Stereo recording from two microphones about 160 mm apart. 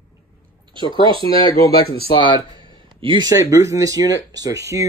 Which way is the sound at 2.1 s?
30° left (ahead or behind).